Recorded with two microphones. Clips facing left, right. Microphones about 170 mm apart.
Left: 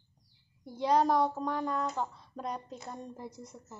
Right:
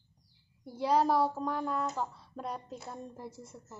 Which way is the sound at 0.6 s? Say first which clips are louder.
Left 1 dB; 5° right (ahead or behind).